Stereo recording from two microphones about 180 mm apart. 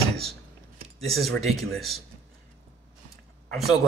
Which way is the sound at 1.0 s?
Centre (ahead or behind).